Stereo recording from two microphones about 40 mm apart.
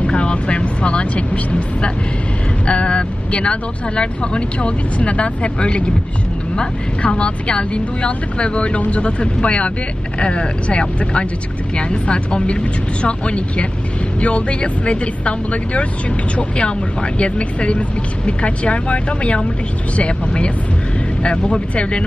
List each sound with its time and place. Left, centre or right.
0.0 s vehicle: left
2.6 s speech: left